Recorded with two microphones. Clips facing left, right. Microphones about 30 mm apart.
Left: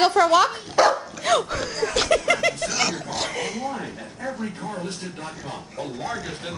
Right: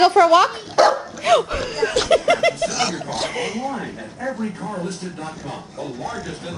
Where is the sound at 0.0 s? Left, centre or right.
Centre.